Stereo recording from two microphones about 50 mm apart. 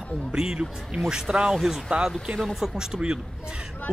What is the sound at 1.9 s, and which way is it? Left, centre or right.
Speech, right.